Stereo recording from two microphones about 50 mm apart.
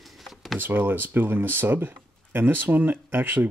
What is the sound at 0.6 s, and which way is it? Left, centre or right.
Speech, right.